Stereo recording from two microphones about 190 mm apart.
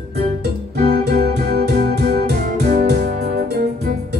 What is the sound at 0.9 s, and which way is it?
Music, 55° right (ahead or behind).